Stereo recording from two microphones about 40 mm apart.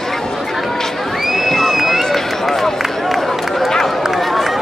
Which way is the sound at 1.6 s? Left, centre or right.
Centre.